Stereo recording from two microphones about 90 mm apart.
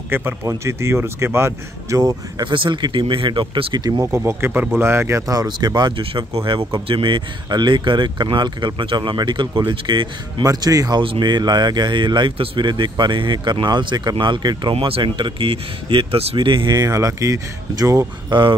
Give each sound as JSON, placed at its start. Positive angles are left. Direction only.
{"t": 0.1, "sound": "speech", "side_deg": -25}
{"t": 2.4, "sound": "speech", "side_deg": -65}
{"t": 3.7, "sound": "speech", "side_deg": -50}
{"t": 4.0, "sound": "speech", "side_deg": -25}
{"t": 5.3, "sound": "speech", "side_deg": -40}
{"t": 10.4, "sound": "speech", "side_deg": -40}
{"t": 16.3, "sound": "speech", "side_deg": -60}
{"t": 16.9, "sound": "speech", "side_deg": -40}
{"t": 18.3, "sound": "speech", "side_deg": -65}